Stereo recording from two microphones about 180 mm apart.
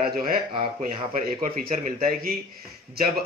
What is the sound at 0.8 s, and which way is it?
Speech, 50° right (ahead or behind).